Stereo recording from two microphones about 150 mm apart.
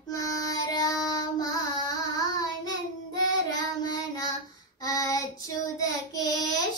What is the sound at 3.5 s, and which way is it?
Child singing, 25° left (ahead or behind).